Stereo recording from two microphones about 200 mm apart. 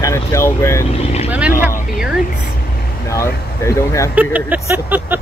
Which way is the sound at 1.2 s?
5° right (ahead or behind).